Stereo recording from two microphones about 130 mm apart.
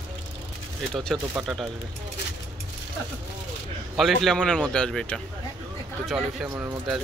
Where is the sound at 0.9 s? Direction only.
Centre (ahead or behind).